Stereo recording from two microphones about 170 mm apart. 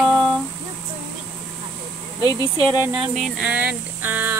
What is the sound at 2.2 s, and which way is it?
Speech, 20° left (ahead or behind).